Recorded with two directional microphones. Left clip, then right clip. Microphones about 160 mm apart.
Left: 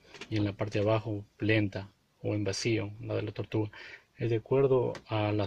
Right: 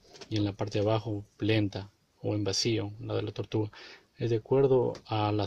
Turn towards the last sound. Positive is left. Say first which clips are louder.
# right 1 dB
turn(degrees=-30)  # may be behind; listen again after turning